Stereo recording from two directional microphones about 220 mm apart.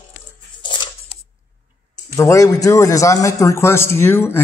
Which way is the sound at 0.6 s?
20° left (ahead or behind).